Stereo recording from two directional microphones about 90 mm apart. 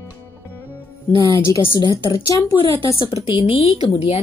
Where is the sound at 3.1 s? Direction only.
60° left (ahead or behind); by 4.2 s 90° left.